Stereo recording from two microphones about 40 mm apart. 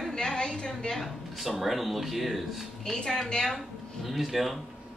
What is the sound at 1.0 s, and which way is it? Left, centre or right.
Speech, centre.